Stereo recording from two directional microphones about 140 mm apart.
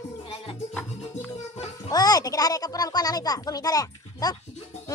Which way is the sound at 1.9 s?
25° left (ahead or behind).